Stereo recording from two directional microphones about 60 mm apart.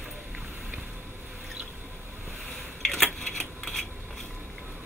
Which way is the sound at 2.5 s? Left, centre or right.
Centre.